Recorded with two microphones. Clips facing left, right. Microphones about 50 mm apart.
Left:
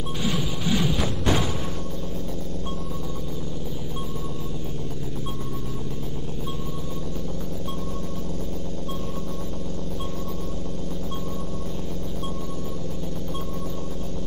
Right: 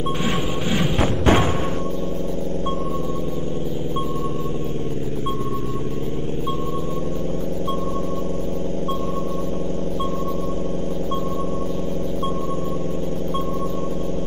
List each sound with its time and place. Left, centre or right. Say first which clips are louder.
0.9 s music: right 7 dB; right